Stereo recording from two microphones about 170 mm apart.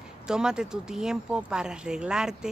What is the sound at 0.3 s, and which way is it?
Speech, 5° right (ahead or behind).